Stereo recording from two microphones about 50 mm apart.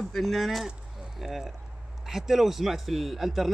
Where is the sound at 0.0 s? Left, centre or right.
Centre.